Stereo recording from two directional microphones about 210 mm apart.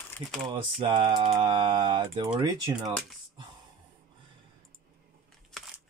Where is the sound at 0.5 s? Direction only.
25° right (ahead or behind).